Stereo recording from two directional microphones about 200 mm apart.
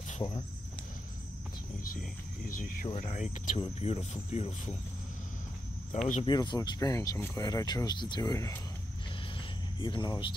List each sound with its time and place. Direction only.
0.2 s speech: 20° left (ahead or behind)
2.0 s speech: 45° left (ahead or behind)
5.9 s speech: 35° left (ahead or behind)
6.2 s speech: 20° left (ahead or behind)
9.8 s speech: 25° left (ahead or behind)